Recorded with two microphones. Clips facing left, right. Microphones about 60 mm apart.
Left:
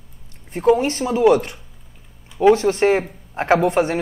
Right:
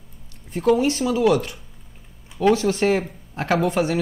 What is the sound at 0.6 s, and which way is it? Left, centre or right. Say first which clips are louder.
Speech: left 2 dB; left.